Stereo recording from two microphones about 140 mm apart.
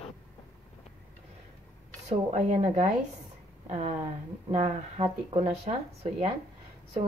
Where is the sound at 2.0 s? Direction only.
65° right (ahead or behind).